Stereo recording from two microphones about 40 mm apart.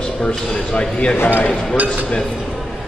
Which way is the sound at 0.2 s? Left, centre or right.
Left.